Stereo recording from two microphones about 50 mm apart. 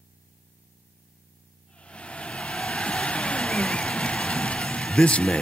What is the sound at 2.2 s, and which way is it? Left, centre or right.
Vehicle, left.